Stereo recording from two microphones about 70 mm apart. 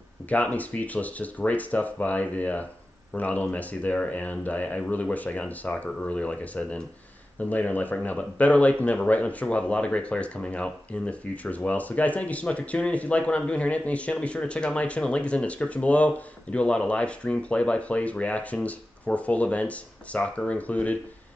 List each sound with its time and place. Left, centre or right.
0.3 s speech: left